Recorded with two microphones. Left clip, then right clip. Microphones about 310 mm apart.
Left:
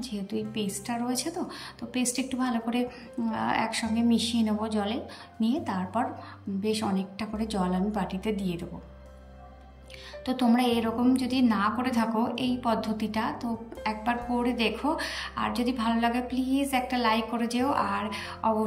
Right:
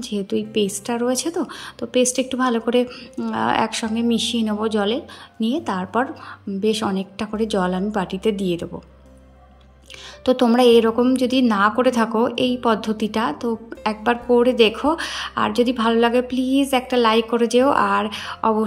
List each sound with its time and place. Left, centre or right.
0.0 s a woman's voice: centre
10.2 s a woman's voice: centre